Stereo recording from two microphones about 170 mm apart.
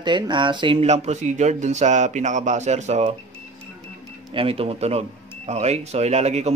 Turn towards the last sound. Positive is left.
turn(degrees=-40)  # may be behind; listen again after turning